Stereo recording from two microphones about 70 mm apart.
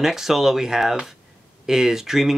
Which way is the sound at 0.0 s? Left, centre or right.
Centre.